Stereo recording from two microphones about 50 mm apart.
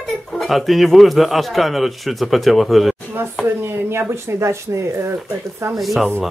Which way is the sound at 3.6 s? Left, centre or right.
Right.